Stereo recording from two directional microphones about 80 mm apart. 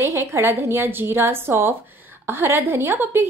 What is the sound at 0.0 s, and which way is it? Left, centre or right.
A woman's voice, right.